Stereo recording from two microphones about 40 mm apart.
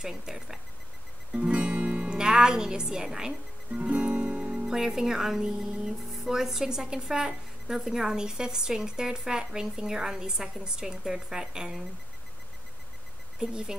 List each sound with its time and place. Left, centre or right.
0.0 s speech: centre
1.3 s music: right
2.0 s a woman's voice: centre
3.7 s music: right
4.6 s speech: centre
13.4 s speech: centre